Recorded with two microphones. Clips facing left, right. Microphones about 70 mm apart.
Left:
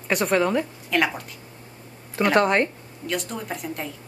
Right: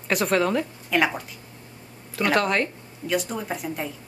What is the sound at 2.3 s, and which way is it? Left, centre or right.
Speech, left.